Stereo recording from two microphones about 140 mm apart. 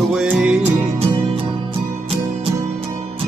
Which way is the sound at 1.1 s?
40° right (ahead or behind).